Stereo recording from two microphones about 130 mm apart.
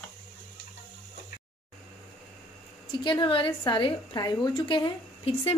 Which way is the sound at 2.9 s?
35° left (ahead or behind).